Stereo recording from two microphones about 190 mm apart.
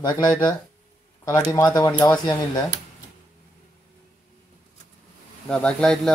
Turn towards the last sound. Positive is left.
turn(degrees=5)  # may be behind; listen again after turning